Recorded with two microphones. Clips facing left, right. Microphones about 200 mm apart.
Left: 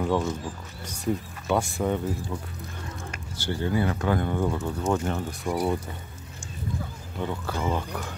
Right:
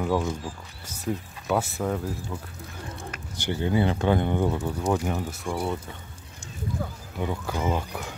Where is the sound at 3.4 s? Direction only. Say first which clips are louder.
Right 2 dB; 15° right (ahead or behind).